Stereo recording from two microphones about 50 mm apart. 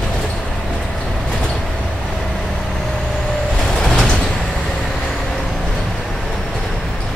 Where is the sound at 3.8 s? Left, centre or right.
Centre.